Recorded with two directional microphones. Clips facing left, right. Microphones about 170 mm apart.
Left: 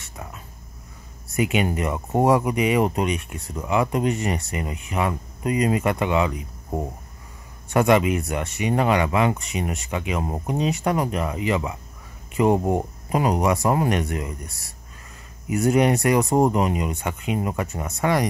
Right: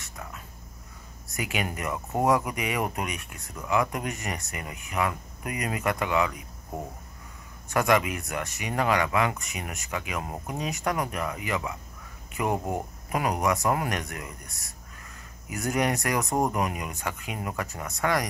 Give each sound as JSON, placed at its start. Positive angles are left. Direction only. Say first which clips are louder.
{"t": 0.0, "sound": "a sound", "louder": "left 3 dB", "side_deg": 25}
{"t": 1.3, "sound": "speech", "louder": "left 9 dB", "side_deg": 25}
{"t": 7.7, "sound": "speech", "louder": "left 6 dB", "side_deg": 25}